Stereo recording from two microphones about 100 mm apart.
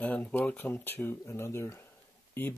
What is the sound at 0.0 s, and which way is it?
Speech, 15° left (ahead or behind).